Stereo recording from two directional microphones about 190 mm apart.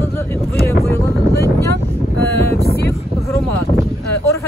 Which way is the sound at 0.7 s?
15° left (ahead or behind).